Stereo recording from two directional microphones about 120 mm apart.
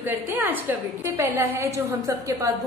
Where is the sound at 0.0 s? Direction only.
15° right (ahead or behind).